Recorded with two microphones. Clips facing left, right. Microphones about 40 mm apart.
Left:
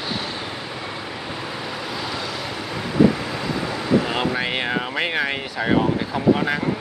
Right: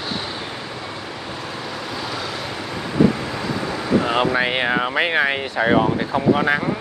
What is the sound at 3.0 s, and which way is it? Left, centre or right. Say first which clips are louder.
Speech: even; centre.